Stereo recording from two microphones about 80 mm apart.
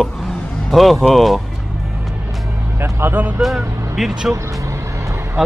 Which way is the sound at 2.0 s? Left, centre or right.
Centre.